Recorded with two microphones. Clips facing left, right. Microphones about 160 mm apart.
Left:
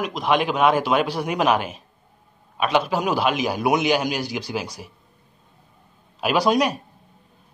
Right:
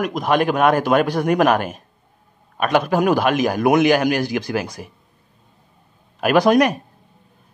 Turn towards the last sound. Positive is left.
turn(degrees=-50)  # may be behind; listen again after turning